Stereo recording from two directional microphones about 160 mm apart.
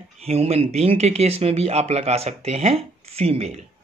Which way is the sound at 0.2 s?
40° right (ahead or behind).